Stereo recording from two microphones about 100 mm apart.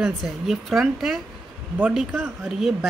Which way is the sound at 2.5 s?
5° right (ahead or behind).